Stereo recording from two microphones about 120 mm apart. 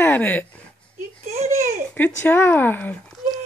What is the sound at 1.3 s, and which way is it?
Babbling, 85° right.